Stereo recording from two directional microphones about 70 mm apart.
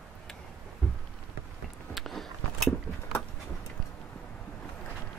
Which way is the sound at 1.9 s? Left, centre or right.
Centre.